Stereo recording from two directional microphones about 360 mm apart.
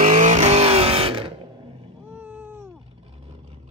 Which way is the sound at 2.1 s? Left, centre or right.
Centre.